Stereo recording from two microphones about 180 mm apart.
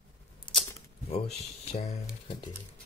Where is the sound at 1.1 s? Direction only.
35° left (ahead or behind).